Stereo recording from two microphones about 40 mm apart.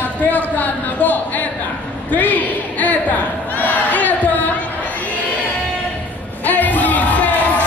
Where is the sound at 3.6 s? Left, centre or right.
Left.